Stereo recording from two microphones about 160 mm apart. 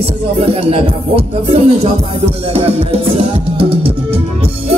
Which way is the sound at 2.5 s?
40° right (ahead or behind).